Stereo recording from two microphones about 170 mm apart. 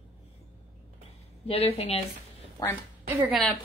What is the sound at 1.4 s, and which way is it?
Speech, 35° left (ahead or behind).